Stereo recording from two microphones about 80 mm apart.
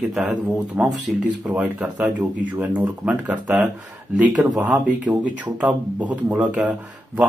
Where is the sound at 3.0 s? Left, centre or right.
Centre.